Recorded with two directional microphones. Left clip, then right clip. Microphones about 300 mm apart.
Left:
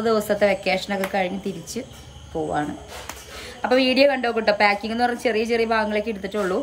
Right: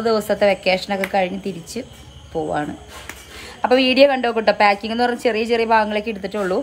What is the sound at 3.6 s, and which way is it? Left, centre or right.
A woman's voice, centre.